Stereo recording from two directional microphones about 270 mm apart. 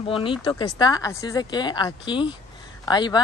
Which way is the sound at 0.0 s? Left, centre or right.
Centre.